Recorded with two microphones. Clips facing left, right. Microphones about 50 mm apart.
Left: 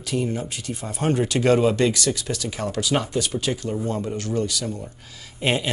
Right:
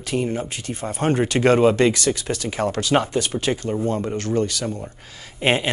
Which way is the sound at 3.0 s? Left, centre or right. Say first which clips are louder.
Right 2 dB; right.